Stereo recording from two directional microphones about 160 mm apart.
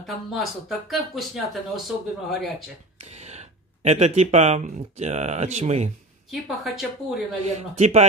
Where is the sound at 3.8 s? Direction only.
40° right (ahead or behind).